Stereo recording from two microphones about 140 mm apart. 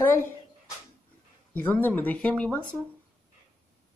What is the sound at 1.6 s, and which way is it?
Speech, 15° left (ahead or behind).